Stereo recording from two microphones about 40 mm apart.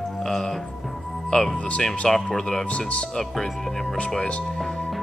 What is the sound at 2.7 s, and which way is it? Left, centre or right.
Speech, left.